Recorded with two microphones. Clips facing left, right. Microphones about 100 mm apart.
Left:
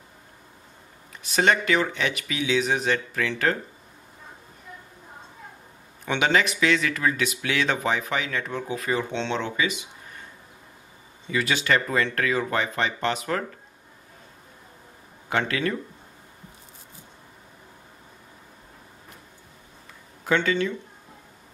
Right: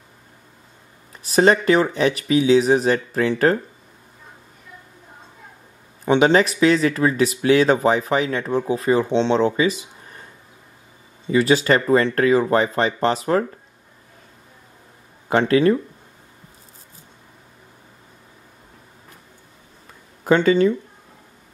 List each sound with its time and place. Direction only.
1.2 s speech: 35° right (ahead or behind)
6.0 s speech: 35° right (ahead or behind)
11.2 s speech: 35° right (ahead or behind)
15.2 s speech: 35° right (ahead or behind)
20.2 s speech: 40° right (ahead or behind)